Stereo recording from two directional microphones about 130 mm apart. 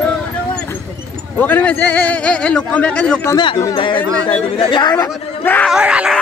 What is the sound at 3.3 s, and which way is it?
A woman's voice, 40° left (ahead or behind).